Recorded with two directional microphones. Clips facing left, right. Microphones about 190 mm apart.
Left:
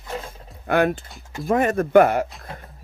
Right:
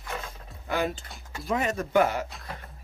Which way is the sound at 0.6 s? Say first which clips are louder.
Left 9 dB; 60° left (ahead or behind).